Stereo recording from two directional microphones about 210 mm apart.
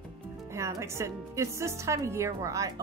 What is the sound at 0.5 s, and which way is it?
Speech, 15° right (ahead or behind).